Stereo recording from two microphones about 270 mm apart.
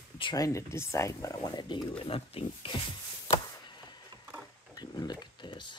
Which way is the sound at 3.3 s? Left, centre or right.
Centre.